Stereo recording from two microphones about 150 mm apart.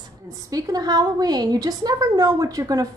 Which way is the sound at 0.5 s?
25° right (ahead or behind).